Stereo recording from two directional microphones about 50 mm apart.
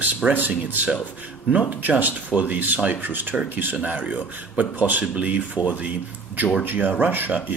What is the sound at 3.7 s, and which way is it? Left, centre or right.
Speech, right.